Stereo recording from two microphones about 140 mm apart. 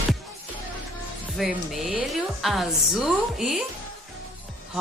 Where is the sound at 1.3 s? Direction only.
Centre (ahead or behind).